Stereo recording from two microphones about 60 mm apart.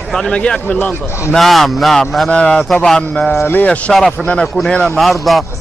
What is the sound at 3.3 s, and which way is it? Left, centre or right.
Speech, left.